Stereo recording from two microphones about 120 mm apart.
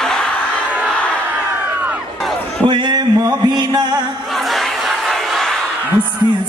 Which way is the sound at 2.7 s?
40° right (ahead or behind).